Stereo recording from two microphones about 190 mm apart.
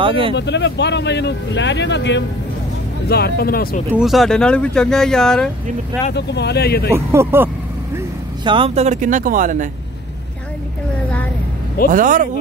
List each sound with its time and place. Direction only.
0.0 s speech: 30° right (ahead or behind)
0.4 s speech: 70° left (ahead or behind)
3.1 s speech: 55° left (ahead or behind)
3.9 s speech: centre (ahead or behind)
6.1 s speech: 60° left (ahead or behind)
6.9 s speech: 15° right (ahead or behind)
8.5 s speech: 30° right (ahead or behind)
11.9 s speech: 45° right (ahead or behind)